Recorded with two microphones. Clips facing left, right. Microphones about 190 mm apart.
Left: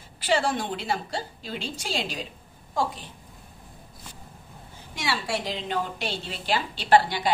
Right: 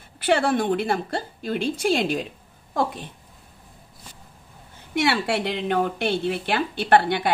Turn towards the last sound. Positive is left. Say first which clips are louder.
# right 2 dB
turn(degrees=-60)  # may be behind; listen again after turning